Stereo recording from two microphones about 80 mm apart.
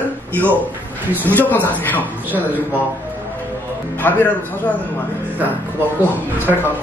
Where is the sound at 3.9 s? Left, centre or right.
Left.